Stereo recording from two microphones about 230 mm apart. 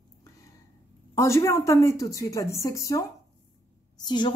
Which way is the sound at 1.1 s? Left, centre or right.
Centre.